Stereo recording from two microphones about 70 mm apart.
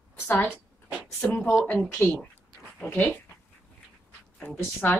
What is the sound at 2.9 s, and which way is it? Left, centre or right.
Speech, left.